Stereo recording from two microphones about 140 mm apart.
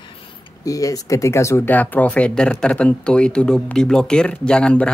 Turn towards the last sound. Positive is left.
turn(degrees=5)  # may be behind; listen again after turning